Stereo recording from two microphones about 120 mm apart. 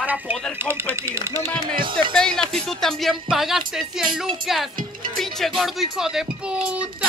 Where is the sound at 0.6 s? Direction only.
20° right (ahead or behind).